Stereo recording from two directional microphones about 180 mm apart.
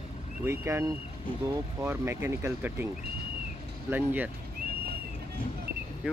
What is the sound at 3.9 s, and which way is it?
Speech, 10° right (ahead or behind).